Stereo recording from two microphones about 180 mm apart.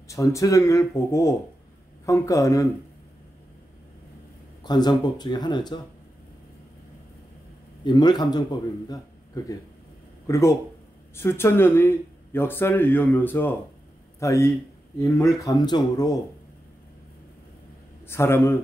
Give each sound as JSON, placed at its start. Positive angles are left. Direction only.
{"t": 0.1, "sound": "speech", "side_deg": 15}
{"t": 4.6, "sound": "a man's voice", "side_deg": 20}
{"t": 7.8, "sound": "a man's voice", "side_deg": 25}
{"t": 18.0, "sound": "speech", "side_deg": 15}